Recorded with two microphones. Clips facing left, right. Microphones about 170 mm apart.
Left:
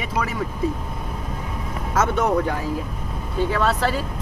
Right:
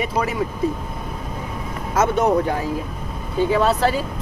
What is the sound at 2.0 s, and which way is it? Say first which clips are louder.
Speech: right 3 dB; 20° right (ahead or behind).